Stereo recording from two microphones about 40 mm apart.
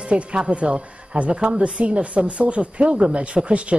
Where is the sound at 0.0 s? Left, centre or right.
Right.